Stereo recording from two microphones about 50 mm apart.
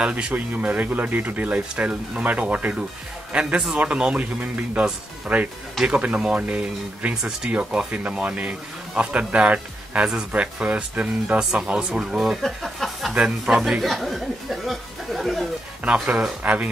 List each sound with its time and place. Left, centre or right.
0.0 s speech: right
7.2 s speech: centre
7.5 s speech: right; by 12.4 s centre
12.4 s a sound: centre
13.1 s speech: centre
13.6 s speech: centre
15.8 s speech: right